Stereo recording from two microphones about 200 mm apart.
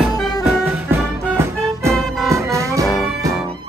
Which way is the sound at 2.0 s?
Centre (ahead or behind).